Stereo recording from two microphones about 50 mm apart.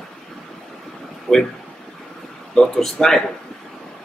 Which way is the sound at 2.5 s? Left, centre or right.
Centre.